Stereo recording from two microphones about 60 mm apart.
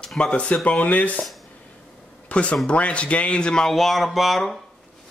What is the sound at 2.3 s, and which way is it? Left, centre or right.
A man's voice, left.